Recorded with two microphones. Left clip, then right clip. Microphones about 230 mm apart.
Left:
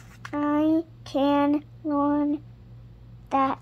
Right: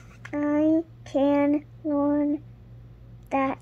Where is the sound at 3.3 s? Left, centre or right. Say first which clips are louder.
Left 2 dB; centre.